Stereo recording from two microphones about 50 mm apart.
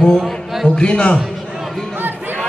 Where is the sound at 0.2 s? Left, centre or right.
Centre.